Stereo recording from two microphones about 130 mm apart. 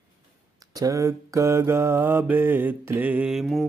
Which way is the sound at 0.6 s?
25° right (ahead or behind).